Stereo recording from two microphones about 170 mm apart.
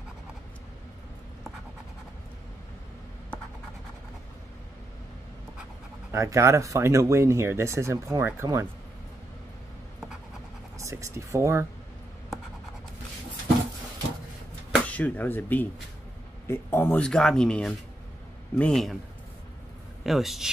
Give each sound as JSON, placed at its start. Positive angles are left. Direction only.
{"t": 6.1, "sound": "speech", "side_deg": -20}
{"t": 10.8, "sound": "speech", "side_deg": -15}
{"t": 14.7, "sound": "speech", "side_deg": 10}
{"t": 20.0, "sound": "a man's voice", "side_deg": 0}